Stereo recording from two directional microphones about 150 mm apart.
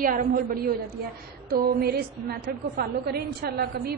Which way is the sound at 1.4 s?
90° right.